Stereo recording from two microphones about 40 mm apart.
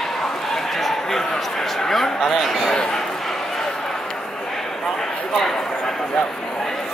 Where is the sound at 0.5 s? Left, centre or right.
Centre.